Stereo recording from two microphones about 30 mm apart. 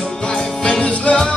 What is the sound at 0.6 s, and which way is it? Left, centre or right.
Music, left.